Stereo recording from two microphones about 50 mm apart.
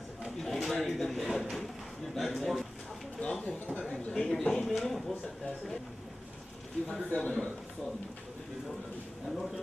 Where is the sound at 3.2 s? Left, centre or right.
Left.